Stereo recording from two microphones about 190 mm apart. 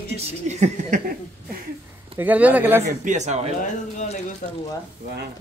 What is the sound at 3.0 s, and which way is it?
Speech, 40° right (ahead or behind).